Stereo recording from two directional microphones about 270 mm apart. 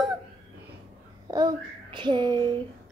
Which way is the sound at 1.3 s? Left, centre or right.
Centre.